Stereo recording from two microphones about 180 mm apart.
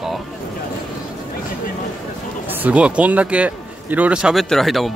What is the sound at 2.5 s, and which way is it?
A man's voice, 10° right (ahead or behind).